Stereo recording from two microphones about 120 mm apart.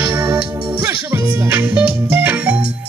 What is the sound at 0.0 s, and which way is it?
Music, 20° right (ahead or behind).